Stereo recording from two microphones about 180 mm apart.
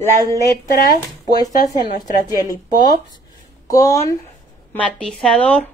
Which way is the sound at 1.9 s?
45° left (ahead or behind).